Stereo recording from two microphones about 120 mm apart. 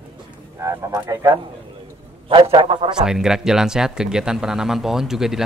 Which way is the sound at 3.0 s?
5° right (ahead or behind).